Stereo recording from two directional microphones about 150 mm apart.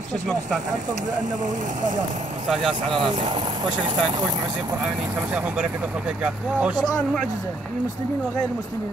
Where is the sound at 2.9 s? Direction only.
35° right (ahead or behind).